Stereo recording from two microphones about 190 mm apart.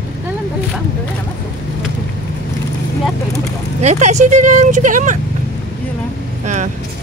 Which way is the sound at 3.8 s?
35° right (ahead or behind).